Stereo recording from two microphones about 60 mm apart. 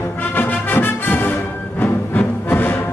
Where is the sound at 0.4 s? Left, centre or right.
Left.